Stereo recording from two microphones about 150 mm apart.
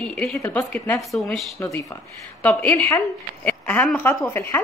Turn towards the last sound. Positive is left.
turn(degrees=15)  # may be behind; listen again after turning